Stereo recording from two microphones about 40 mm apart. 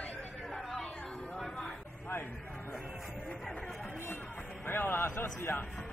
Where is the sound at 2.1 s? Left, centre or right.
Left.